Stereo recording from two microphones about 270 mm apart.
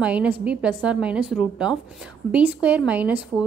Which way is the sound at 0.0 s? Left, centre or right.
Centre.